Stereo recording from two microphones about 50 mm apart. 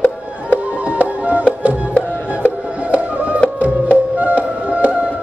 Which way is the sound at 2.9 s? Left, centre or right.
Right.